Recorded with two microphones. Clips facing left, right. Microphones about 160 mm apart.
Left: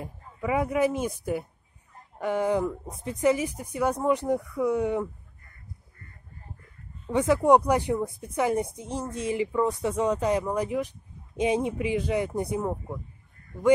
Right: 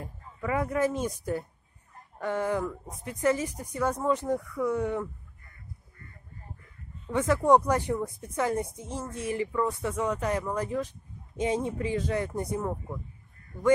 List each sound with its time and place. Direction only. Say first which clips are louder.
0.0 s speech: left 3 dB; 15° left (ahead or behind)
7.1 s speech: left 2 dB; 20° left (ahead or behind)